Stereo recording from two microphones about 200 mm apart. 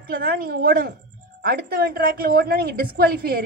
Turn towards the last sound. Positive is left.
turn(degrees=-50)  # may be behind; listen again after turning